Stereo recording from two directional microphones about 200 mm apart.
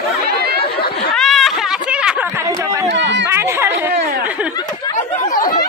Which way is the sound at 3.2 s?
10° right (ahead or behind).